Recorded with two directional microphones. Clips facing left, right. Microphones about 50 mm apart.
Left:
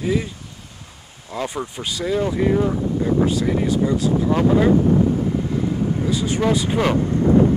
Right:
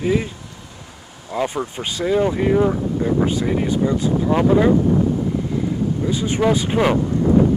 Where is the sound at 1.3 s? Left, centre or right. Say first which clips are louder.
Right 4 dB; centre.